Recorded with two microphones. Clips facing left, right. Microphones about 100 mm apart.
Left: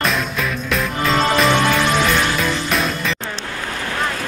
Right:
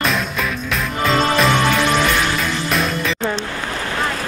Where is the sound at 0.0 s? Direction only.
Centre (ahead or behind).